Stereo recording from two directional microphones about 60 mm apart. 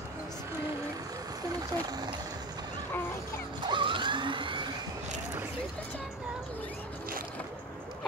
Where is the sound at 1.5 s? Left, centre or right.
Right.